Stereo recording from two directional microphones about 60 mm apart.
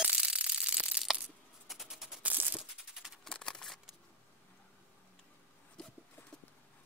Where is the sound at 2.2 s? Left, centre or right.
Right.